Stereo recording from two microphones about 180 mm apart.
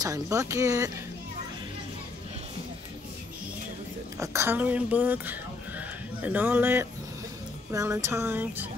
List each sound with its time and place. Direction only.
0.0 s speech: 20° right (ahead or behind)
4.2 s speech: 15° right (ahead or behind)